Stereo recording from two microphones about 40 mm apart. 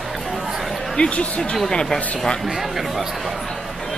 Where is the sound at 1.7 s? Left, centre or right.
Centre.